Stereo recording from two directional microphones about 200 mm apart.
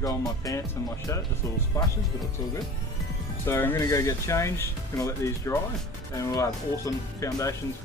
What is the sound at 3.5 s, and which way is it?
Speech, 10° left (ahead or behind).